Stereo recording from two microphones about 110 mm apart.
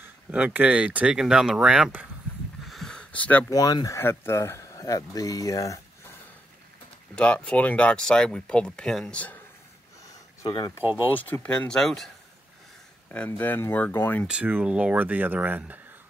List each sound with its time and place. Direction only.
0.0 s speech: 15° right (ahead or behind)
2.6 s a sound: centre (ahead or behind)
3.4 s speech: 35° left (ahead or behind)
7.2 s speech: 10° left (ahead or behind)
10.0 s a sound: 35° left (ahead or behind)
11.1 s speech: 15° left (ahead or behind)
13.1 s speech: 15° left (ahead or behind)
14.2 s speech: 10° right (ahead or behind)